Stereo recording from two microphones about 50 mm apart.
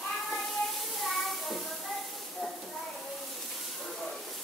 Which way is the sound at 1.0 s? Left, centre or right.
Centre.